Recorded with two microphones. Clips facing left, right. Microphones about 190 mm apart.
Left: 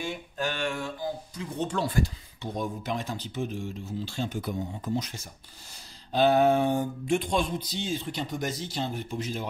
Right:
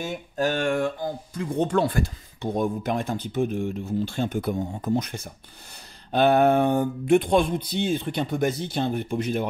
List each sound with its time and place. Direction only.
0.0 s speech: 45° right (ahead or behind); by 9.5 s 60° right (ahead or behind)